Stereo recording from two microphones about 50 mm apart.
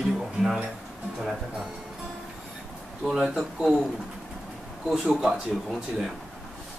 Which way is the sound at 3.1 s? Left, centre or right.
Centre.